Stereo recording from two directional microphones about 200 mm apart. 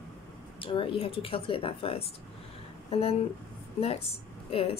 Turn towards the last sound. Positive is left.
turn(degrees=30)  # may be behind; listen again after turning